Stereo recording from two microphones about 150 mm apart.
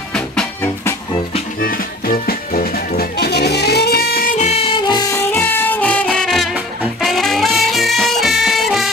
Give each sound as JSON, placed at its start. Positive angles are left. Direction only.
{"t": 1.6, "sound": "music", "side_deg": 75}
{"t": 4.4, "sound": "music", "side_deg": 45}
{"t": 4.8, "sound": "music", "side_deg": 25}